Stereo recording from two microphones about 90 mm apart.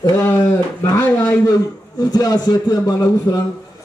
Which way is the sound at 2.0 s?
50° left (ahead or behind).